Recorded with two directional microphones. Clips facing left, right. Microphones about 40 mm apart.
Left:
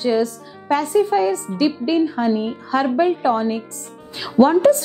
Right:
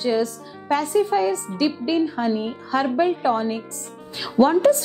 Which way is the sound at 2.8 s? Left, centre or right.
Left.